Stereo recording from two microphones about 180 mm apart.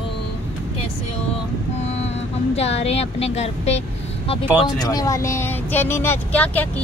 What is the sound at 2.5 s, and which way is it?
A woman's voice, 35° left (ahead or behind).